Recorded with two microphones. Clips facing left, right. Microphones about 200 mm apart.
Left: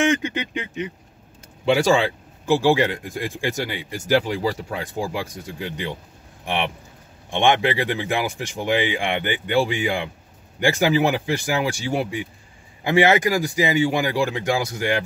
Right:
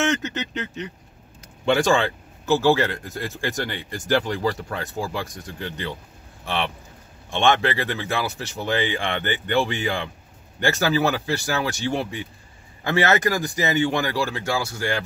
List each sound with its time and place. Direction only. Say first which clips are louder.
0.0 s speech: left 3 dB; 10° left (ahead or behind)